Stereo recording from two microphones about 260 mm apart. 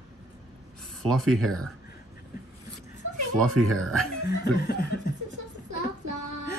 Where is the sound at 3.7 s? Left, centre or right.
Centre.